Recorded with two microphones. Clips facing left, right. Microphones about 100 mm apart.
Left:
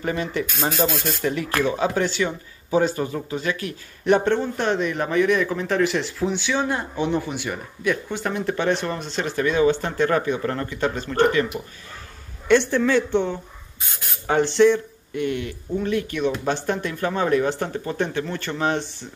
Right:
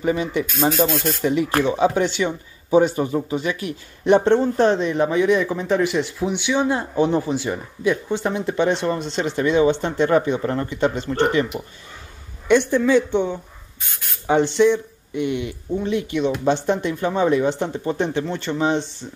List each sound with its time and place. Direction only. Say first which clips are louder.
0.0 s speech: right 4 dB; 15° right (ahead or behind)
0.5 s speech: right 6 dB; centre (ahead or behind)
1.2 s speech: right 3 dB; 15° right (ahead or behind)
6.8 s speech: right 4 dB; 35° right (ahead or behind); by 19.0 s 20° right (ahead or behind)